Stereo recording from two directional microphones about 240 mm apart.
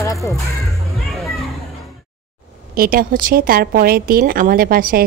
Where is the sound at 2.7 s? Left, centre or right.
Right.